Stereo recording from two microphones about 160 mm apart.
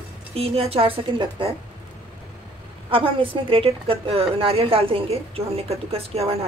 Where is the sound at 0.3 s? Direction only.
40° right (ahead or behind).